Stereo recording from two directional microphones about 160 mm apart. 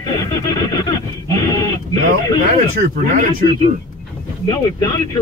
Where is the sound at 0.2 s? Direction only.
25° left (ahead or behind).